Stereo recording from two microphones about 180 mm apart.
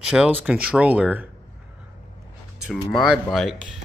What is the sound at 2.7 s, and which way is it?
Speech, centre (ahead or behind).